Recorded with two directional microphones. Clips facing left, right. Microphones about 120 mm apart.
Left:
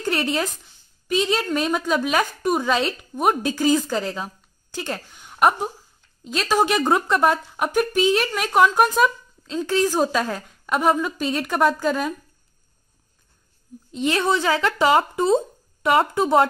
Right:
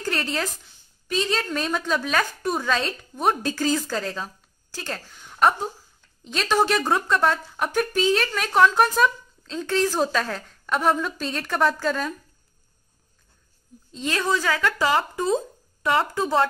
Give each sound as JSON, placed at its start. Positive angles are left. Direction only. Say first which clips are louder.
{"t": 0.0, "sound": "speech", "louder": "left 4 dB", "side_deg": 15}
{"t": 7.5, "sound": "speech", "louder": "left 3 dB", "side_deg": 10}
{"t": 13.9, "sound": "speech", "louder": "left 4 dB", "side_deg": 20}